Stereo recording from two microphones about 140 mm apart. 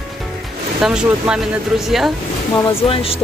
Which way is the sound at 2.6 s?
40° left (ahead or behind).